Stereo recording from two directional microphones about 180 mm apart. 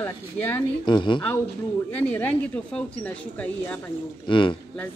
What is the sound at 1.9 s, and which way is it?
Speech, 10° left (ahead or behind).